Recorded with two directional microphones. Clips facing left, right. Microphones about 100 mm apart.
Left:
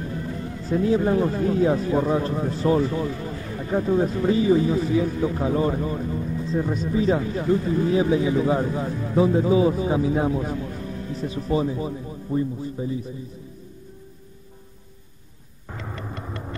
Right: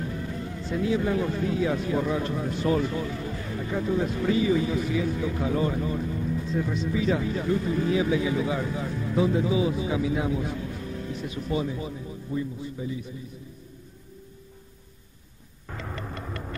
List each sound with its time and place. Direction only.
0.7 s speech: 40° left (ahead or behind)
15.7 s music: 10° left (ahead or behind)
16.2 s vehicle: 20° left (ahead or behind)